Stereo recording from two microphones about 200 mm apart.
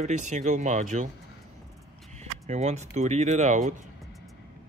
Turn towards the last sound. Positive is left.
turn(degrees=-40)  # may be behind; listen again after turning